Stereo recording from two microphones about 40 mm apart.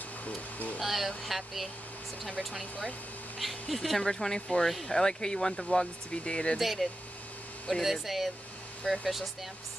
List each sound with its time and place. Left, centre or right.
0.2 s speech: left
0.7 s speech: centre
3.3 s speech: centre
4.1 s speech: centre
6.6 s speech: centre